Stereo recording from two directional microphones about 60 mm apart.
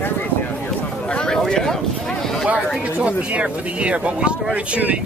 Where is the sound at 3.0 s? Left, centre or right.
Right.